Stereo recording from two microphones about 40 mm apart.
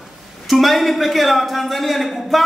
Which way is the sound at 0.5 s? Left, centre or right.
Centre.